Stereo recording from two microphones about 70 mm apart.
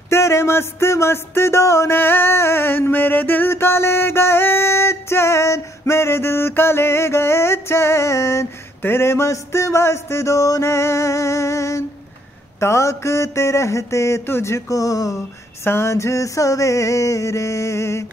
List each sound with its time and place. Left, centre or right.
0.1 s speech: left
12.5 s mantra: left
15.6 s mantra: left